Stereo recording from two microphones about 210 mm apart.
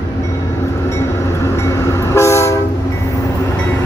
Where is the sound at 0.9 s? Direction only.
15° left (ahead or behind).